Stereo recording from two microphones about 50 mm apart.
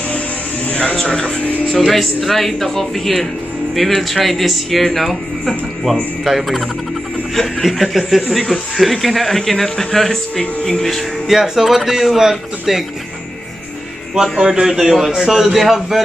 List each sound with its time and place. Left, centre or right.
0.7 s a sound: left
1.0 s speech: centre
2.2 s speech: centre
7.6 s speech: centre
10.4 s speech: left
10.8 s speech: centre
11.2 s speech: centre
14.1 s speech: centre